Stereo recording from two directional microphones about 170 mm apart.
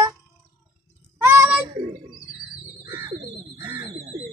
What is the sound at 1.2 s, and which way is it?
Child singing, 15° right (ahead or behind).